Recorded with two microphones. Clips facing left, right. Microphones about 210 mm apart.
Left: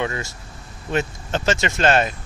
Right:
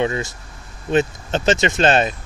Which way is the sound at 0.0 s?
20° right (ahead or behind).